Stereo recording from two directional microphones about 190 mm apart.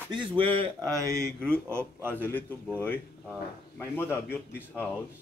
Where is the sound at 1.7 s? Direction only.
10° right (ahead or behind).